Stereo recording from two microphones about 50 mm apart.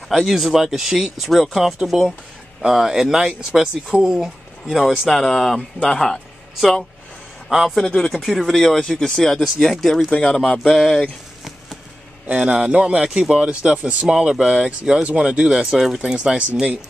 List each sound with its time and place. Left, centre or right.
0.1 s a man's voice: centre
7.7 s speech: centre
8.3 s speech: centre
10.3 s speech: centre
10.6 s speech: centre
12.3 s speech: right